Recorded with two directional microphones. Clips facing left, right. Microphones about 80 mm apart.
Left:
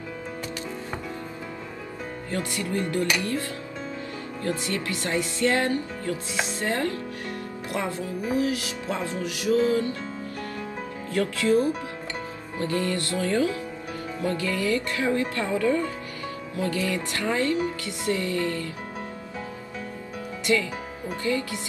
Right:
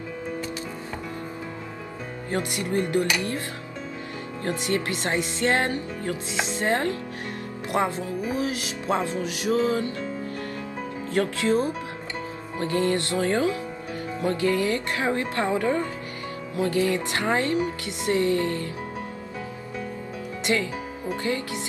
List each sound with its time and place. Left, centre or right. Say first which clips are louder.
2.3 s speech: right 3 dB; right
4.4 s speech: right 2 dB; right
11.4 s speech: left 1 dB; right
21.3 s speech: left 3 dB; right